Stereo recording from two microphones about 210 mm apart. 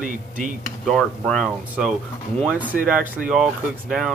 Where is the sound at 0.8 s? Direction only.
Centre (ahead or behind).